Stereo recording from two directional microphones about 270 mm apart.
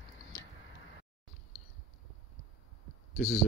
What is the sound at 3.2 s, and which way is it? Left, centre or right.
Speech, centre.